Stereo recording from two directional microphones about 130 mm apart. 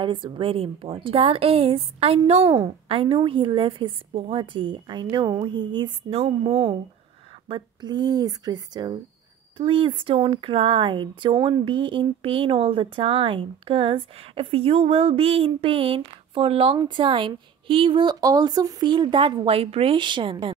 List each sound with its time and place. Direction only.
0.0 s a woman's voice: 40° right (ahead or behind)